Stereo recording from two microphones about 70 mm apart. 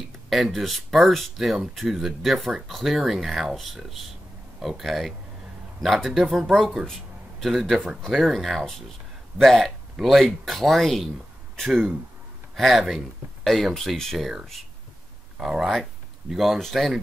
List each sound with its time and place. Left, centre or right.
0.3 s speech: centre